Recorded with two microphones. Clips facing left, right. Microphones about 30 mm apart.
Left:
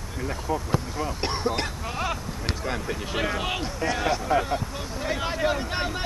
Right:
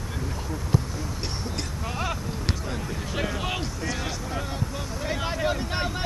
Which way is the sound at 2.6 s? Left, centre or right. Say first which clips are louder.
Left 3 dB; left.